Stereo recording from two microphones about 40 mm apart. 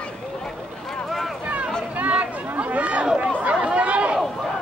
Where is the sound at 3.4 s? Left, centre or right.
Right.